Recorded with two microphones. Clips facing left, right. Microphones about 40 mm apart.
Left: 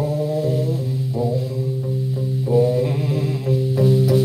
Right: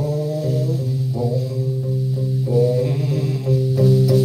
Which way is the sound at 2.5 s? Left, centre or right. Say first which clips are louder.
Left 1 dB; left.